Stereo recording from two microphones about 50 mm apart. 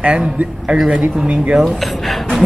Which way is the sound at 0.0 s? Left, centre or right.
Right.